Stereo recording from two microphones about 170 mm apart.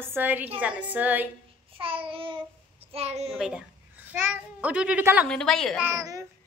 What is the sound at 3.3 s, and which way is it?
A woman's voice, 5° right (ahead or behind).